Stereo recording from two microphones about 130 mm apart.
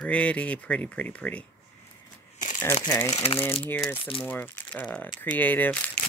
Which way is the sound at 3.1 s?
50° left (ahead or behind).